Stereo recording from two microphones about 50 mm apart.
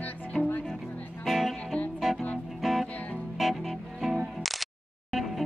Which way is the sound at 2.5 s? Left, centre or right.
Centre.